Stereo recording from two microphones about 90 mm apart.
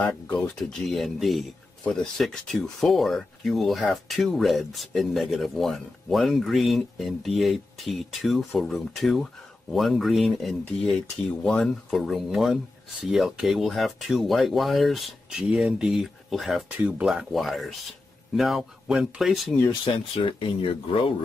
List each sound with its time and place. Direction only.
0.3 s speech: 10° left (ahead or behind)
16.7 s speech: 10° right (ahead or behind)
19.7 s speech: 70° left (ahead or behind)